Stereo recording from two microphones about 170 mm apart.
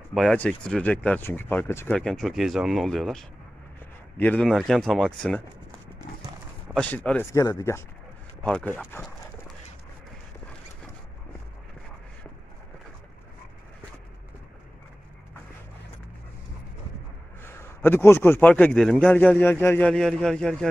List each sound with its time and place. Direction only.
0.1 s a man's voice: centre (ahead or behind)
2.0 s speech: centre (ahead or behind)
6.7 s a man's voice: 10° left (ahead or behind)
17.4 s a man's voice: 15° left (ahead or behind)